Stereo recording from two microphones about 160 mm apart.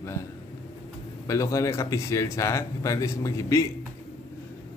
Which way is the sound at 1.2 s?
20° left (ahead or behind).